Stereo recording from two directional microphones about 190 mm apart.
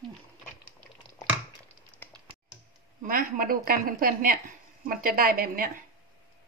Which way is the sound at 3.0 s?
50° right (ahead or behind).